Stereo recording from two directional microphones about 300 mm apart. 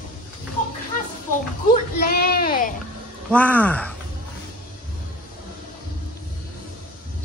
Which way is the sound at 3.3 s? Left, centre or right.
Centre.